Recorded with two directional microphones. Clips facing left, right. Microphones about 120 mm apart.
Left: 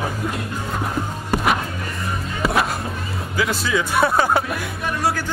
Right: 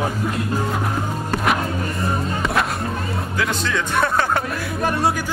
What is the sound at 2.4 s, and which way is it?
Music, 5° left (ahead or behind).